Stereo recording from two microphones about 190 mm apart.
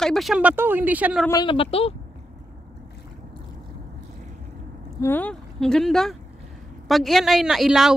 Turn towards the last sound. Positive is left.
turn(degrees=-5)  # may be behind; listen again after turning